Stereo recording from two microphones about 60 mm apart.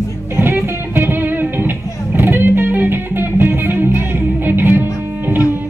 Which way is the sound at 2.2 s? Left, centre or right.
Right.